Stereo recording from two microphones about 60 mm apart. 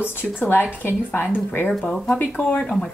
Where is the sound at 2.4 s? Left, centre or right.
Centre.